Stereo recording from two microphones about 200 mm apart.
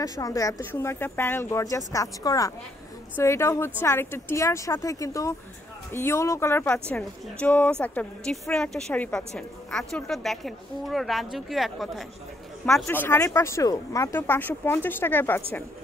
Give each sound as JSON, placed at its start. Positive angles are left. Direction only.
{"t": 0.0, "sound": "a woman's voice", "side_deg": 15}
{"t": 12.8, "sound": "speech", "side_deg": 10}